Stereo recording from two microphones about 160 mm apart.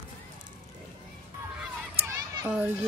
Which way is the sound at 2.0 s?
20° right (ahead or behind).